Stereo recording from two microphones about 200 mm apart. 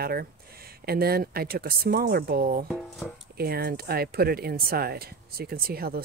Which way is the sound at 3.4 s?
50° right (ahead or behind).